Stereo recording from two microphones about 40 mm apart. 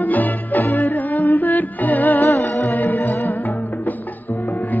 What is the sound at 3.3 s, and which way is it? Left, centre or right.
Music, left.